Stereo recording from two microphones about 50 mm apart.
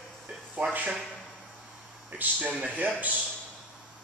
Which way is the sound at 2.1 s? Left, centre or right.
Right.